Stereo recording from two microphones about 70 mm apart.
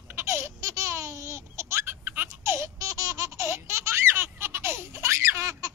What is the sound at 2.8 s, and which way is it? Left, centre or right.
Baby laughter, right.